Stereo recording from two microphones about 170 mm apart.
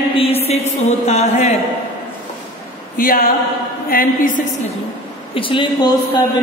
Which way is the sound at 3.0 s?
55° left (ahead or behind).